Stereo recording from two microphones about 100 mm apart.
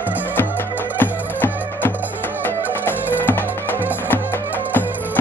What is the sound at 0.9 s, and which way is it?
Music, 20° left (ahead or behind).